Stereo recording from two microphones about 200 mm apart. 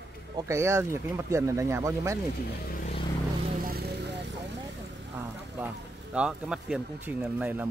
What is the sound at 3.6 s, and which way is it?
Vehicle, 50° right (ahead or behind).